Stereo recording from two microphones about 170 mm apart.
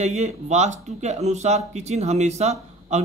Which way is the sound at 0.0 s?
40° right (ahead or behind).